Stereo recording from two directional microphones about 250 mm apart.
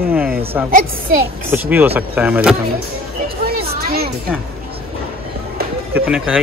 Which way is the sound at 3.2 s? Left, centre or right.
Right.